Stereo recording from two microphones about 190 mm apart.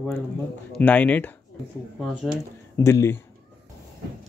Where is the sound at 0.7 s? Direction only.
10° left (ahead or behind).